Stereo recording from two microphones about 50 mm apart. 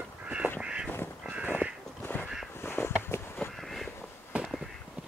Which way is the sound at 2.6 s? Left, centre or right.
Left.